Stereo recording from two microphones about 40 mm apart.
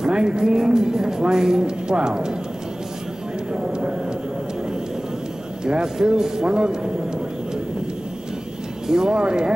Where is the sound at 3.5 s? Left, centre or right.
Right.